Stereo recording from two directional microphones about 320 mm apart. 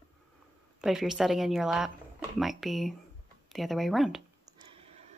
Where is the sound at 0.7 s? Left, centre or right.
Centre.